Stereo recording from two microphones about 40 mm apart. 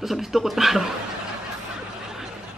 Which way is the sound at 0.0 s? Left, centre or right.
Centre.